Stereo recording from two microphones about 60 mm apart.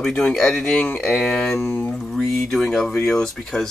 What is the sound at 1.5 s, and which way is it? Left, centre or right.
Speech, left.